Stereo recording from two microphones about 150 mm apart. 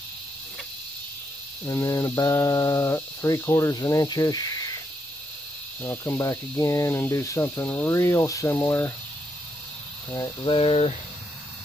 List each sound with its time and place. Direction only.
1.7 s speech: 20° left (ahead or behind)
5.8 s speech: 20° left (ahead or behind)
10.1 s a sound: 30° left (ahead or behind)